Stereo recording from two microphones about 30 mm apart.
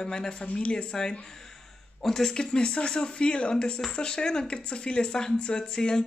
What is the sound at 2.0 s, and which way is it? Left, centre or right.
Speech, centre.